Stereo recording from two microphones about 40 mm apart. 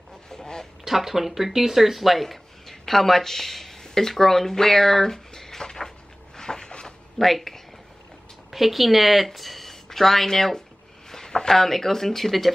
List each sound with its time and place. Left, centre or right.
0.3 s quack: centre
0.8 s speech: centre
7.2 s speech: centre